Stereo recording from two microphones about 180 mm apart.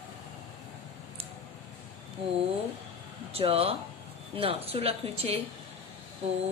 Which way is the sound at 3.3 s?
35° right (ahead or behind).